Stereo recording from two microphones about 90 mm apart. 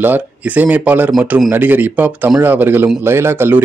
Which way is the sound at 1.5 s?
20° right (ahead or behind).